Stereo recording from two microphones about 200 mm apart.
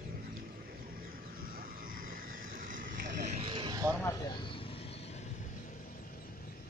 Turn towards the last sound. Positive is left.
turn(degrees=35)  # may be behind; listen again after turning